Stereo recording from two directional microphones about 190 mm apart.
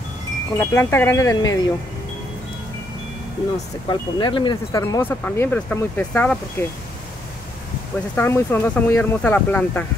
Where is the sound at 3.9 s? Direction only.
25° left (ahead or behind); by 6.4 s 10° left (ahead or behind).